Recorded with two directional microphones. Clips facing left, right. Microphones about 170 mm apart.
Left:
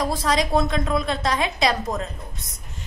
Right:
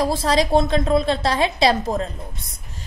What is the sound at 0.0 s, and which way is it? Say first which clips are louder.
A woman's voice: right 3 dB; 30° right (ahead or behind).